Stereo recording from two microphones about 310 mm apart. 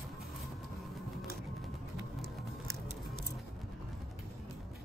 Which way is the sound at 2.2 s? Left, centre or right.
Centre.